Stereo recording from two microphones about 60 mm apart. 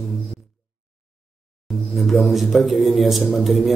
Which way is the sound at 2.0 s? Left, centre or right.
Centre.